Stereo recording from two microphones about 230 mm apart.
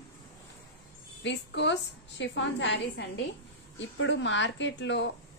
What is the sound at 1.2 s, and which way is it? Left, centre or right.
A woman's voice, left.